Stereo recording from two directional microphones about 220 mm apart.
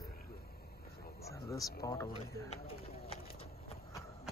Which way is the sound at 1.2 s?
15° left (ahead or behind).